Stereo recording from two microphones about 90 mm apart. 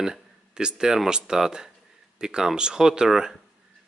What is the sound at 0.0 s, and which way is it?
Speech, 5° right (ahead or behind).